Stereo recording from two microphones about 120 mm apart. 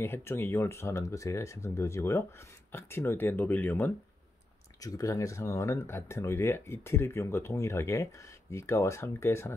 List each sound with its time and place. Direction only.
0.0 s speech: 20° left (ahead or behind)
4.7 s speech: 30° left (ahead or behind)